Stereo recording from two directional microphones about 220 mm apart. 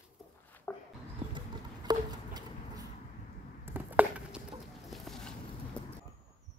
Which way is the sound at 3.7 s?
5° right (ahead or behind).